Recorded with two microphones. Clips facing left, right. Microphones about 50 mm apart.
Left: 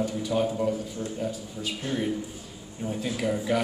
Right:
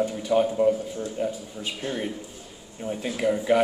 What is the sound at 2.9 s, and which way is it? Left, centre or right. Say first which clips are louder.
Speech: right 3 dB; right.